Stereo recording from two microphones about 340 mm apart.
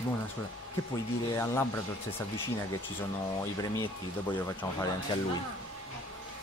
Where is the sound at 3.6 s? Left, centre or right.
Centre.